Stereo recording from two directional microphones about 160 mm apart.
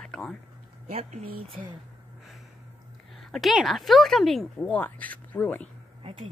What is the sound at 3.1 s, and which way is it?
Speech, centre (ahead or behind).